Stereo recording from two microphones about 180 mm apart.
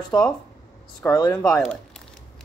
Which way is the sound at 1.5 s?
5° left (ahead or behind).